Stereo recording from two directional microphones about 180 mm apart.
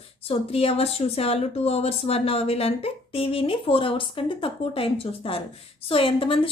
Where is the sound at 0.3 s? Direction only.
35° left (ahead or behind).